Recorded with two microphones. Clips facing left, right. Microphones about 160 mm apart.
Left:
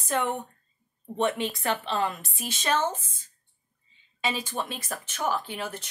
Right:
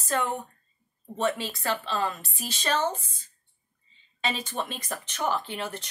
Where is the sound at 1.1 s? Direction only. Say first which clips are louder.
Left 1 dB; 20° left (ahead or behind).